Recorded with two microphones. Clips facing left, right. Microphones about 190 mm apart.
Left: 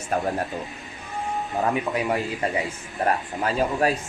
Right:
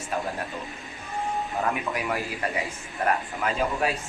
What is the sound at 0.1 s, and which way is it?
Speech, 50° left (ahead or behind).